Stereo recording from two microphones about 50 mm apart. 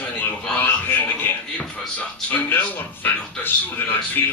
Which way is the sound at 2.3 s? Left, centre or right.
Left.